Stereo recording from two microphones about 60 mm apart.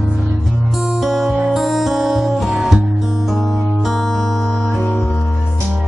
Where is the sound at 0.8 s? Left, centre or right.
Centre.